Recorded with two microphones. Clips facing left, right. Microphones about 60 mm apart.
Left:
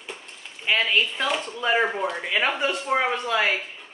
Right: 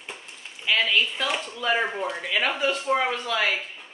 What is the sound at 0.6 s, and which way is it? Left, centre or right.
Speech, centre.